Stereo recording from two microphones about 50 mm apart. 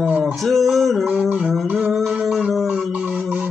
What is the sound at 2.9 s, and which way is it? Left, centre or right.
Music, right.